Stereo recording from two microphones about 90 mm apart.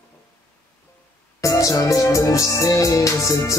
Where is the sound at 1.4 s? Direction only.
35° left (ahead or behind).